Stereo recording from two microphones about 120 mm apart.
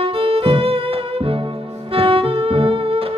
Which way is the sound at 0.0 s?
50° right (ahead or behind).